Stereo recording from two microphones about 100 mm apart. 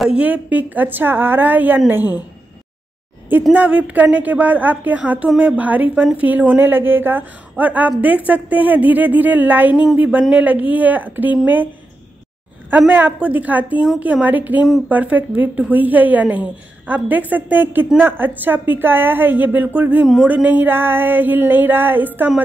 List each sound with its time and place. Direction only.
0.0 s a woman's voice: 10° right (ahead or behind)
3.5 s a woman's voice: 15° right (ahead or behind)